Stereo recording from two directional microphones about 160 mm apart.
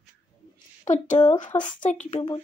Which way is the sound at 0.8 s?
45° left (ahead or behind).